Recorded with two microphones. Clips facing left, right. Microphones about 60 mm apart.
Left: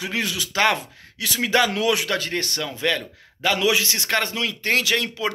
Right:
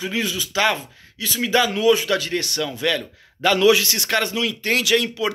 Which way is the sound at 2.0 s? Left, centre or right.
Left.